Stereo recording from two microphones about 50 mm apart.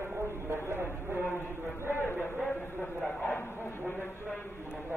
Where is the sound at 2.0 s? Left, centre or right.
Left.